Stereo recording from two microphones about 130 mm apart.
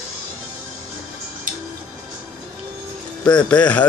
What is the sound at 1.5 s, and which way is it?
Music, 90° right.